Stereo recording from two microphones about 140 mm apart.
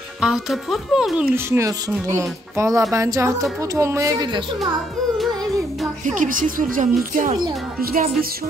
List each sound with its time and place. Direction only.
0.2 s speech: centre (ahead or behind)
1.3 s speech: 20° right (ahead or behind)
6.0 s speech: 70° right (ahead or behind)
7.8 s music: 90° right